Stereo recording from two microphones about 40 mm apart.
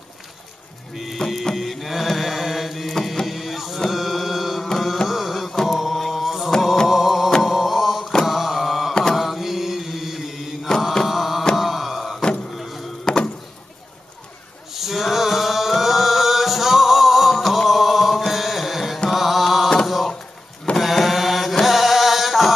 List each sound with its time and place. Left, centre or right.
0.9 s music: centre
1.2 s chant: centre
3.9 s mantra: centre
9.0 s chant: centre
11.1 s music: centre
11.5 s a sound: centre
12.4 s sheep: centre
13.0 s a sound: left
14.7 s chant: centre
19.0 s mantra: centre
20.7 s mantra: centre